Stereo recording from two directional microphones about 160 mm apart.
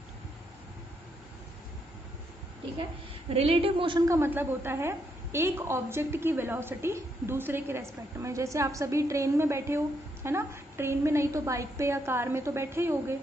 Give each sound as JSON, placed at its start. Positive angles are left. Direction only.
{"t": 3.3, "sound": "a woman's voice", "side_deg": -35}
{"t": 4.1, "sound": "a woman's voice", "side_deg": -15}